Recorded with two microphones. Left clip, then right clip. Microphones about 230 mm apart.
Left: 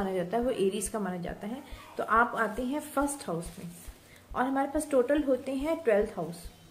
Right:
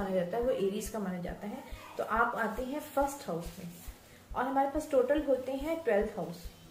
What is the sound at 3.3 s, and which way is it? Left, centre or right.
A woman's voice, left.